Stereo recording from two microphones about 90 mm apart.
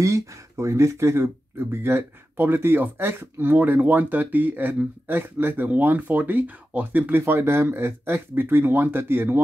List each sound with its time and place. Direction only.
0.0 s speech: 35° right (ahead or behind)